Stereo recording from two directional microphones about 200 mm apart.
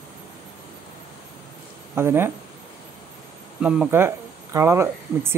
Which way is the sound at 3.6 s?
5° right (ahead or behind).